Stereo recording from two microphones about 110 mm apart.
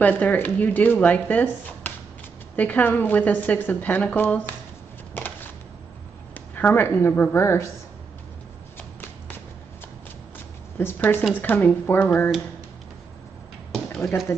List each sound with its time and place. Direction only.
0.0 s speech: 15° left (ahead or behind)
5.1 s a sound: 20° left (ahead or behind)
6.3 s speech: 15° left (ahead or behind)
10.8 s speech: 20° left (ahead or behind)
13.9 s speech: 5° left (ahead or behind)